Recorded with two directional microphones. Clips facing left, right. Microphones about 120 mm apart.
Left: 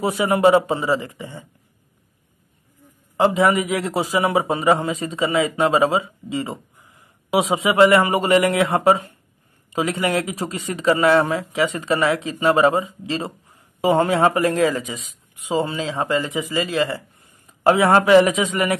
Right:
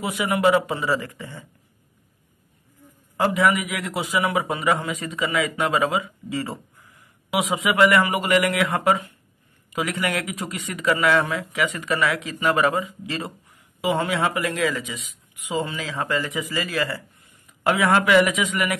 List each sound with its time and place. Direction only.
0.0 s a man's voice: 35° left (ahead or behind)
3.2 s a man's voice: 25° left (ahead or behind)